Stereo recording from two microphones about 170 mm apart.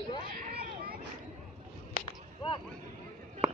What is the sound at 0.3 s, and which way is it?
Children playing, 60° right (ahead or behind).